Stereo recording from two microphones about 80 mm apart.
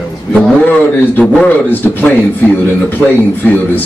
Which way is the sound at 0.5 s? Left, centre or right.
Left.